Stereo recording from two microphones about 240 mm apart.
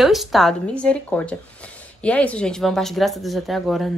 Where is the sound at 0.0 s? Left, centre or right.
Centre.